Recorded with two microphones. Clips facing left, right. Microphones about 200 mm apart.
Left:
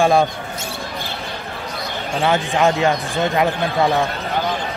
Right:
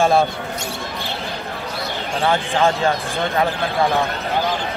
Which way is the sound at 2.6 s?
15° left (ahead or behind).